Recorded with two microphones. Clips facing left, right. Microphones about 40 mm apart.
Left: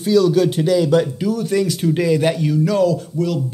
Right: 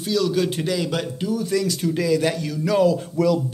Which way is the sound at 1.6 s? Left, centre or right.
Left.